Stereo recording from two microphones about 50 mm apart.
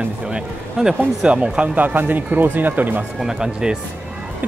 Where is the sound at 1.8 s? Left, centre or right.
Right.